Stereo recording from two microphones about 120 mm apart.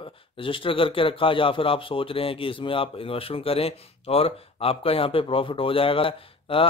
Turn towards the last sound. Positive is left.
turn(degrees=50)  # may be behind; listen again after turning